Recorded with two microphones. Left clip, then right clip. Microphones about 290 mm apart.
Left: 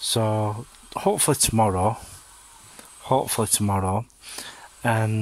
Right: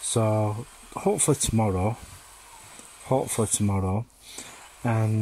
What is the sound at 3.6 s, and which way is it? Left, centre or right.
Speech, left.